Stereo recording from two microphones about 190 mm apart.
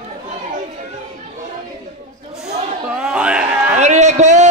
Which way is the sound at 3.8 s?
35° right (ahead or behind).